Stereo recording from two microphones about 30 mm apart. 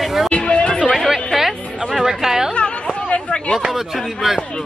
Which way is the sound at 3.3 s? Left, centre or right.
Left.